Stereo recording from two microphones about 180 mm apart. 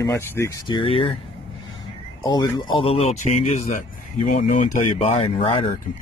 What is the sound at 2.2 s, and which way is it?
Speech, 25° left (ahead or behind).